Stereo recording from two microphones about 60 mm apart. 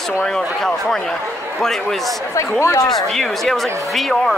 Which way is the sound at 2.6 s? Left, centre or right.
Left.